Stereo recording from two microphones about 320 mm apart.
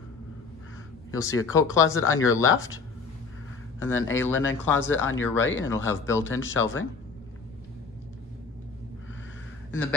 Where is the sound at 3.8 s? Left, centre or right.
Left.